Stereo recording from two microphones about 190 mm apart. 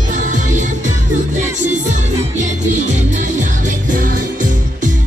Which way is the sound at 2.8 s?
40° right (ahead or behind).